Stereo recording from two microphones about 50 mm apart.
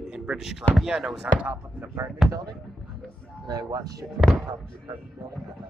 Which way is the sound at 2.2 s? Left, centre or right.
Centre.